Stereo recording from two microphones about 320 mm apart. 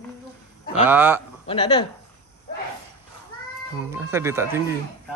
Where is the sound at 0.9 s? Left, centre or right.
Centre.